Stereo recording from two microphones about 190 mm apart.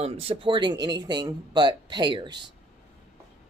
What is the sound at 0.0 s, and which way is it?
Speech, 30° right (ahead or behind).